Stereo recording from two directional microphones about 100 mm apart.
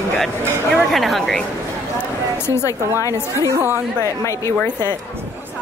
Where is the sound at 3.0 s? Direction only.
30° left (ahead or behind).